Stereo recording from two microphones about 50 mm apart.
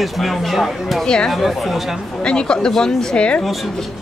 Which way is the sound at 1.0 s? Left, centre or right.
Centre.